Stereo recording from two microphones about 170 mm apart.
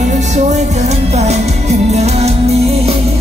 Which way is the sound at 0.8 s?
40° right (ahead or behind).